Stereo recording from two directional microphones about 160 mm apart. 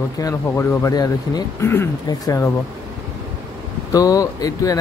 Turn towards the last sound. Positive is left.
turn(degrees=20)  # may be behind; listen again after turning